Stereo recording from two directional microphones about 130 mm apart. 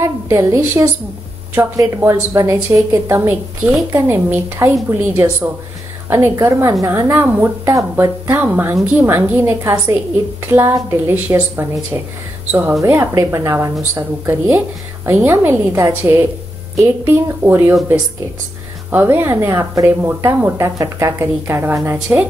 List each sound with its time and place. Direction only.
0.0 s a woman's voice: 25° right (ahead or behind)
18.9 s speech: 15° right (ahead or behind)